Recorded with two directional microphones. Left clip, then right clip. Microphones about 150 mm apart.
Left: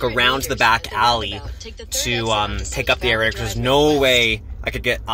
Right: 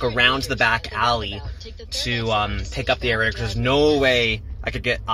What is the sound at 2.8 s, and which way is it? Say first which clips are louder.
Speech: left 3 dB; 15° left (ahead or behind).